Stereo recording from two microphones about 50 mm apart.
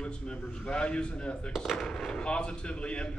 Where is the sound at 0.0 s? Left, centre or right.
Left.